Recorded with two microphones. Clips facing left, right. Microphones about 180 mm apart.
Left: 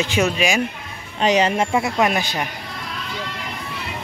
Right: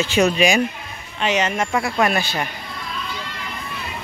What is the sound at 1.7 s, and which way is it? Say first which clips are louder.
Speech: left 1 dB; 20° left (ahead or behind).